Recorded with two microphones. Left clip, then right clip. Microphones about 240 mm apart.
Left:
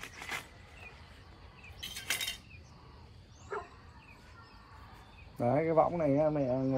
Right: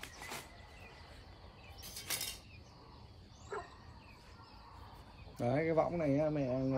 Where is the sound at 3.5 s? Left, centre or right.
Left.